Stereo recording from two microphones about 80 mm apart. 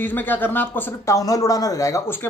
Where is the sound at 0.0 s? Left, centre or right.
Left.